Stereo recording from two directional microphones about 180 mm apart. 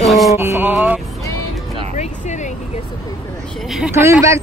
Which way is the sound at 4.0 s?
15° right (ahead or behind).